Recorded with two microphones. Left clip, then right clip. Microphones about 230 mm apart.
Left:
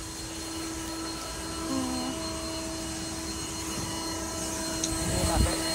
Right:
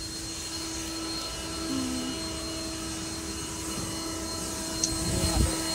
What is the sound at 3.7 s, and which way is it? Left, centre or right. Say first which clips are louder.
Vehicle: left 1 dB; left.